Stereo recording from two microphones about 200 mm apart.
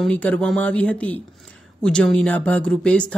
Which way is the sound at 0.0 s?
5° left (ahead or behind).